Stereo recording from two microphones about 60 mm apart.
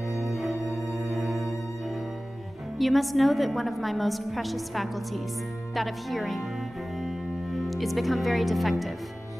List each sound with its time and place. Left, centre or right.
0.2 s music: centre
2.8 s a woman's voice: centre
7.0 s music: centre